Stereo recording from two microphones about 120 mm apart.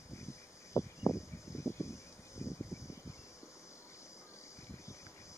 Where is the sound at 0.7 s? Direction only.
25° left (ahead or behind).